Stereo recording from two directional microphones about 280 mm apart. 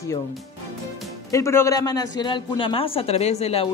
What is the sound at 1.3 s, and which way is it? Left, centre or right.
A man's voice, centre.